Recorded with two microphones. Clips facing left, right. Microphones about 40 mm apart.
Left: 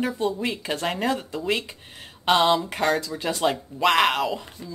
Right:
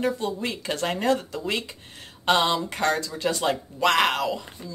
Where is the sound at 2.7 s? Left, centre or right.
Centre.